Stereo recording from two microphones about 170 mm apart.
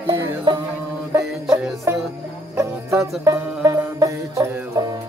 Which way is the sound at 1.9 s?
15° right (ahead or behind).